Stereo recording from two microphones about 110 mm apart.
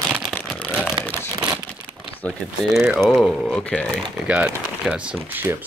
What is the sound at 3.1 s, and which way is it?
Speech, centre (ahead or behind).